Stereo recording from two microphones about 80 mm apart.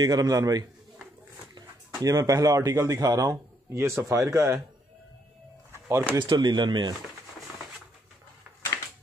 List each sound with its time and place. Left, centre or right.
0.0 s a man's voice: right
2.0 s a man's voice: right
5.7 s a sound: right
6.1 s speech: right